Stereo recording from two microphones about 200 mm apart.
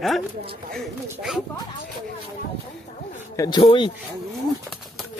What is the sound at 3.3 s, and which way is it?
Speech, 20° left (ahead or behind).